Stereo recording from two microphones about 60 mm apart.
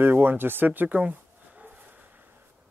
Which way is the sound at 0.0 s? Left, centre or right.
Right.